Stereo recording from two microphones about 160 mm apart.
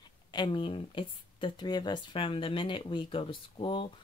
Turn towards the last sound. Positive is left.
turn(degrees=30)  # may be behind; listen again after turning